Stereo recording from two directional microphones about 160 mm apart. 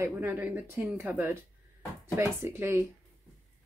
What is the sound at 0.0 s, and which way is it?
Speech, 15° right (ahead or behind).